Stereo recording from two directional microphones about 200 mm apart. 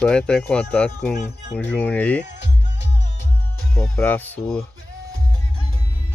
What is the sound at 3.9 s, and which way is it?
Speech, 10° left (ahead or behind).